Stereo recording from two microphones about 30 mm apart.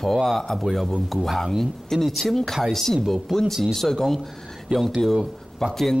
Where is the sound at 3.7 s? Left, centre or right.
Centre.